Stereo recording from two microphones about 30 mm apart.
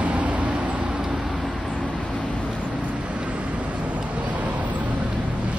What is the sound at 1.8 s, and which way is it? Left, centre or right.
Vehicle, left.